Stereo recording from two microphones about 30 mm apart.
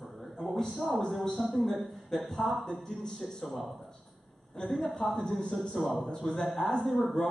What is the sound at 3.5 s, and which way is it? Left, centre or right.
Speech, centre.